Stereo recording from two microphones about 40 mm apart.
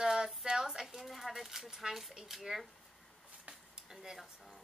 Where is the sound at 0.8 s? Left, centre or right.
Centre.